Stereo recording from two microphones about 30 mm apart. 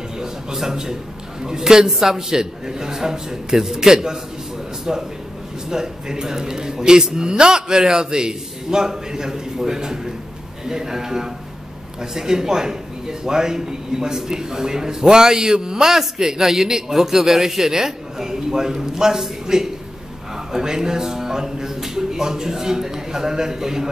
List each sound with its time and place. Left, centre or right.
0.2 s speech: centre
1.9 s a man's voice: centre
15.8 s a man's voice: centre